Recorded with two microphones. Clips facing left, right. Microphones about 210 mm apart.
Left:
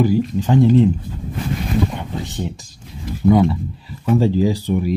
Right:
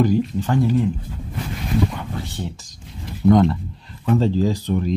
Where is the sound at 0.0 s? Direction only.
10° left (ahead or behind).